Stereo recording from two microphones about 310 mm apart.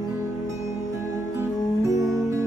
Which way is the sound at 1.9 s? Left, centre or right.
Centre.